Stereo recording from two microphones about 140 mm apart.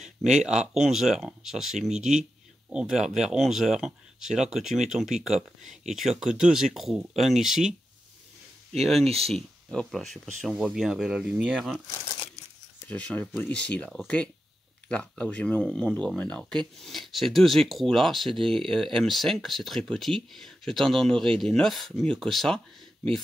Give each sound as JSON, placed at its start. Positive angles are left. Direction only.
{"t": 0.0, "sound": "speech", "side_deg": -5}
{"t": 9.0, "sound": "speech", "side_deg": -45}
{"t": 9.3, "sound": "speech", "side_deg": 0}
{"t": 12.8, "sound": "speech", "side_deg": 10}